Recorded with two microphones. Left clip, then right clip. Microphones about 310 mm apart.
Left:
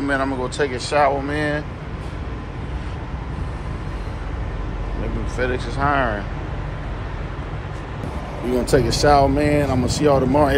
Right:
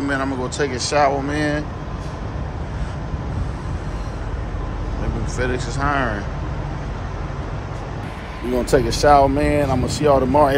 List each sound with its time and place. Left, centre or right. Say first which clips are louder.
0.0 s speech: left 1 dB; centre
5.4 s speech: left 1 dB; centre
8.5 s speech: even; centre